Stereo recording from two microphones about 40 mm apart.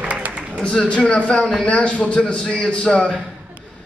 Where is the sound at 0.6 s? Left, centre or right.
Left.